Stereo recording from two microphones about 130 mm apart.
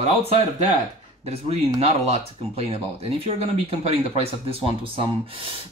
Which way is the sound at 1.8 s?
55° right (ahead or behind).